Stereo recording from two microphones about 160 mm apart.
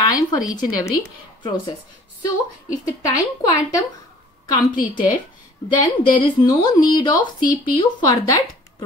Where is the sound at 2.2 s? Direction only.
20° left (ahead or behind).